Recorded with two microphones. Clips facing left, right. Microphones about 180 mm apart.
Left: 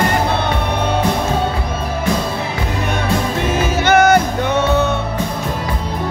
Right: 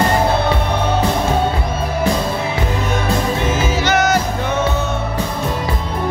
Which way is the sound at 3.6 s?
55° left (ahead or behind).